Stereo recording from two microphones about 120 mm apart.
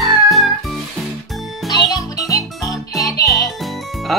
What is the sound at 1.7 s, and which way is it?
Music, 30° left (ahead or behind).